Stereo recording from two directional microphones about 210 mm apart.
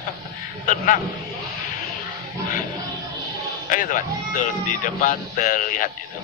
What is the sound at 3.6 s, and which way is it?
Speech, 40° left (ahead or behind).